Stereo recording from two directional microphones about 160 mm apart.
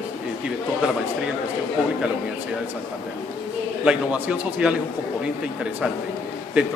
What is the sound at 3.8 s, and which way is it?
Speech, 5° right (ahead or behind).